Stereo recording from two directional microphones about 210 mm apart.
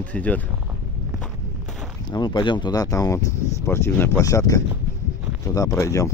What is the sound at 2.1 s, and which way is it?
Speech, 20° left (ahead or behind).